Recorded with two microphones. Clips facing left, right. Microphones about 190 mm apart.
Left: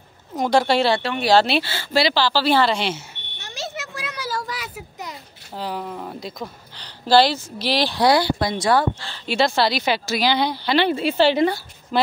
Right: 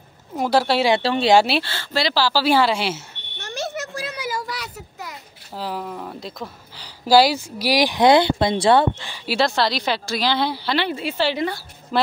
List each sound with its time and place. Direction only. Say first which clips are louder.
0.4 s a woman's voice: left 1 dB; 5° right (ahead or behind)
1.0 s speech: right 4 dB; 30° right (ahead or behind)
1.3 s speech: even; 10° right (ahead or behind)
1.6 s speech: left 3 dB; 10° left (ahead or behind)
2.1 s speech: right 5 dB; 10° right (ahead or behind)
3.3 s smoke detector: right 4 dB; 50° right (ahead or behind)
3.9 s a sound: right 3 dB; 35° right (ahead or behind)
4.3 s a sound: left 1 dB; 10° right (ahead or behind)
5.6 s speech: even; centre (ahead or behind); by 8.8 s 25° right (ahead or behind)
9.0 s a woman's voice: even; 10° right (ahead or behind)
10.7 s a woman's voice: left 4 dB; 25° left (ahead or behind)
11.9 s a woman's voice: even; centre (ahead or behind)